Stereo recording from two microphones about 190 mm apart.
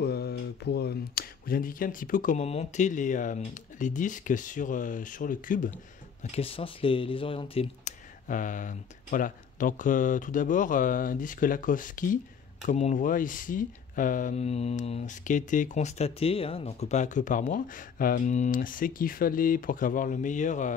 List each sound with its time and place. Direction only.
0.0 s speech: 55° left (ahead or behind)
6.3 s speech: 30° left (ahead or behind)
8.3 s speech: 45° left (ahead or behind)